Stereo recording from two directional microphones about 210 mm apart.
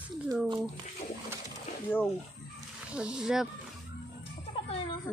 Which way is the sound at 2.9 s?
5° right (ahead or behind).